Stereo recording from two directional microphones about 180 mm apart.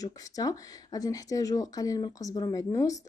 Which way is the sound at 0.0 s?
20° left (ahead or behind).